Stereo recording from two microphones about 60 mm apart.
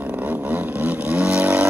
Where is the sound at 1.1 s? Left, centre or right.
Right.